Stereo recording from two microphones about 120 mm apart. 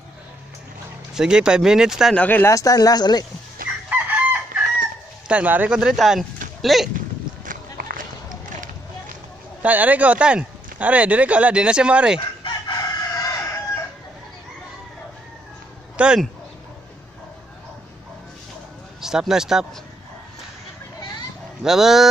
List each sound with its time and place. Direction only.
1.1 s speech: 5° right (ahead or behind)
2.1 s speech: 15° left (ahead or behind)
2.5 s speech: 30° left (ahead or behind)
3.9 s chicken: 15° right (ahead or behind)
5.3 s speech: 15° right (ahead or behind)
9.6 s speech: 15° right (ahead or behind)
12.4 s chicken: 35° left (ahead or behind)
16.0 s speech: 10° right (ahead or behind)
18.9 s speech: 5° right (ahead or behind)
21.6 s speech: 5° right (ahead or behind)